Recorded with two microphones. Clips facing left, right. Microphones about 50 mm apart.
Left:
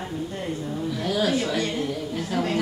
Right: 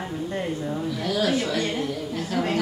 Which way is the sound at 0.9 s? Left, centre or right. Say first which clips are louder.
Left 1 dB; centre.